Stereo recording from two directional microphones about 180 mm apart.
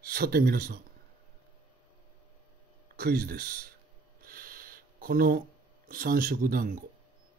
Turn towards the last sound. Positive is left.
turn(degrees=-50)  # may be behind; listen again after turning